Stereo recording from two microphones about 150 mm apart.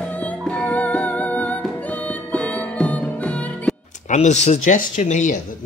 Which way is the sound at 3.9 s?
55° left (ahead or behind).